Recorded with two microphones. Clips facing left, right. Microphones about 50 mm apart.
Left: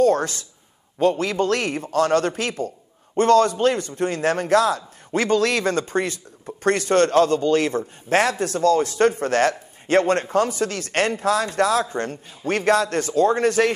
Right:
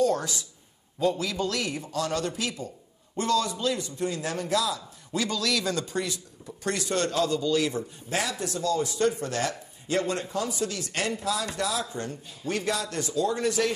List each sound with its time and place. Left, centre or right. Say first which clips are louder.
0.0 s a man's voice: left 7 dB; left